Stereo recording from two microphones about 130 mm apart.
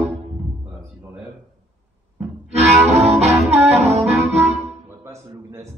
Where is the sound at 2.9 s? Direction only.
55° right (ahead or behind).